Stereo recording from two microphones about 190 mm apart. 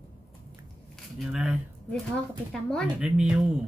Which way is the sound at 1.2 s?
5° right (ahead or behind).